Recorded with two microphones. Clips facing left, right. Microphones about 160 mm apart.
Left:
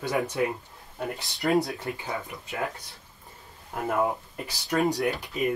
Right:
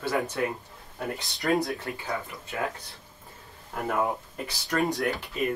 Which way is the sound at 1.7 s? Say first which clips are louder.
Even; 15° left (ahead or behind).